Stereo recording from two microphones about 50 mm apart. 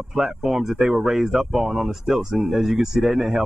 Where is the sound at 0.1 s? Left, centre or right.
Centre.